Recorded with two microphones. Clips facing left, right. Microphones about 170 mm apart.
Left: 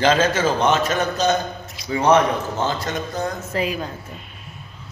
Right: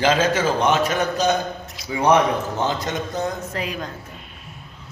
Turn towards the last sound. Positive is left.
turn(degrees=5)  # may be behind; listen again after turning